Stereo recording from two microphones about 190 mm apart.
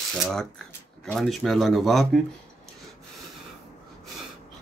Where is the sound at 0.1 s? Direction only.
5° left (ahead or behind).